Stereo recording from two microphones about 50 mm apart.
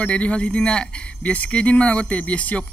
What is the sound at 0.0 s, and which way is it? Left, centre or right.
A man's voice, left.